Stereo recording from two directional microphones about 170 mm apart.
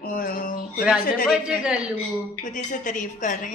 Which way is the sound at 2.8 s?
50° left (ahead or behind).